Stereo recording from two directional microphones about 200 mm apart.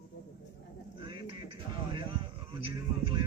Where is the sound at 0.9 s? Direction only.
25° right (ahead or behind).